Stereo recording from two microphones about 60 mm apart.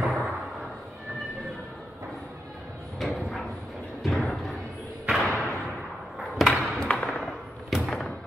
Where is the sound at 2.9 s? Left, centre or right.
Centre.